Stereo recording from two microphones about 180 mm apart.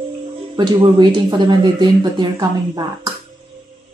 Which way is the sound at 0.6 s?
25° right (ahead or behind).